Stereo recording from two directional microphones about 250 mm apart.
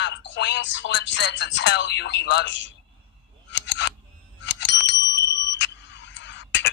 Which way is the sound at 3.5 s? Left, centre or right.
Left.